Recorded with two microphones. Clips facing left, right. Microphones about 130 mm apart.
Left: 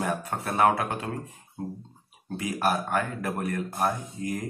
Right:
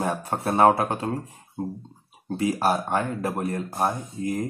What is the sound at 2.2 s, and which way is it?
Speech, 30° right (ahead or behind).